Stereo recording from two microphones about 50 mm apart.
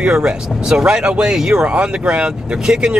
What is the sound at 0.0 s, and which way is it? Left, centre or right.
Speech, centre.